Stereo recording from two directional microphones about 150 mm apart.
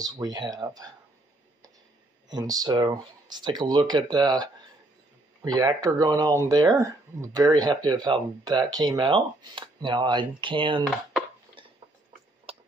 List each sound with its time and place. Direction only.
0.0 s speech: 25° right (ahead or behind)
2.2 s speech: 25° right (ahead or behind)
12.5 s a sound: 40° right (ahead or behind)